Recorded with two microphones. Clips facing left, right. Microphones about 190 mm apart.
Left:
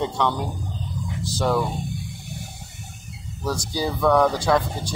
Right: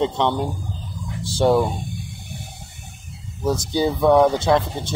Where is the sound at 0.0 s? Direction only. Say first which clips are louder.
Right 3 dB; 25° right (ahead or behind).